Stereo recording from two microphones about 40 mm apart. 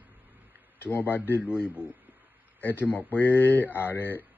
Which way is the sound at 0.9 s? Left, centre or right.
Left.